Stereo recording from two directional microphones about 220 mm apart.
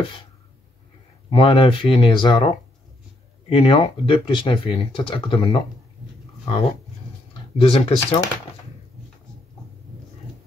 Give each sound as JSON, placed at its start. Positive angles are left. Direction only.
{"t": 1.3, "sound": "speech", "side_deg": 25}
{"t": 7.5, "sound": "speech", "side_deg": 25}